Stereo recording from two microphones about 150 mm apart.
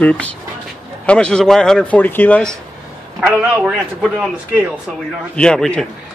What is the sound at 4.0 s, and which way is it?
Speech, 5° left (ahead or behind).